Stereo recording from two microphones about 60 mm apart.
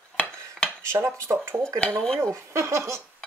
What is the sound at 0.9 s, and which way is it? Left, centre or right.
Speech, right.